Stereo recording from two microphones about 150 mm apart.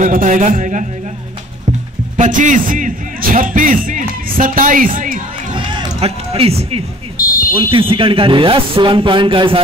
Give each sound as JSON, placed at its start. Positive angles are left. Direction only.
{"t": 0.0, "sound": "speech", "side_deg": -65}
{"t": 2.1, "sound": "speech", "side_deg": -60}
{"t": 5.9, "sound": "speech", "side_deg": -45}
{"t": 7.2, "sound": "fire alarm", "side_deg": 75}
{"t": 7.7, "sound": "speech", "side_deg": -35}